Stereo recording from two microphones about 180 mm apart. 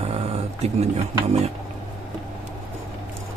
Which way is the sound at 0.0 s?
35° right (ahead or behind).